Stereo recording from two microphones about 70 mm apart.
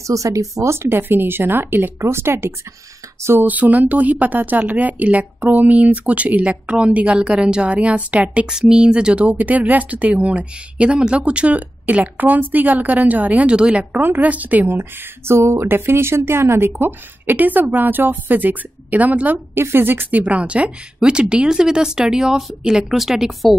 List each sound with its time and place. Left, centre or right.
0.0 s speech: right
0.8 s speech: right
3.4 s speech: right
19.5 s speech: right; by 23.5 s centre